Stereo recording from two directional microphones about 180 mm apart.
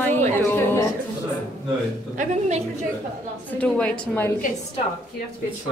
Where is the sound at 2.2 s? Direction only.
40° right (ahead or behind).